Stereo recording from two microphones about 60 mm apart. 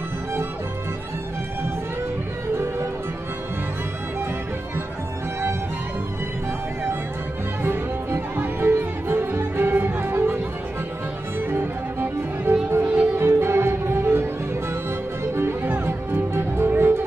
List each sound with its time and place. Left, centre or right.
2.5 s music: right
7.6 s music: right
12.8 s music: right
13.1 s music: right
15.3 s music: right